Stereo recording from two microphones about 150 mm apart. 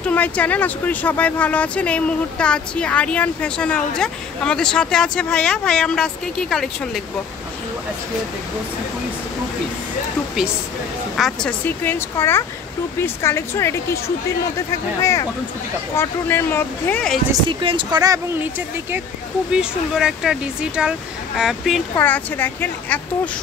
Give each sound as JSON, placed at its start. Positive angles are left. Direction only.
{"t": 0.0, "sound": "speech", "side_deg": 10}
{"t": 11.1, "sound": "speech", "side_deg": 0}
{"t": 11.6, "sound": "speech", "side_deg": 15}
{"t": 17.3, "sound": "speech", "side_deg": -35}
{"t": 19.5, "sound": "speech", "side_deg": -5}
{"t": 21.9, "sound": "speech", "side_deg": 15}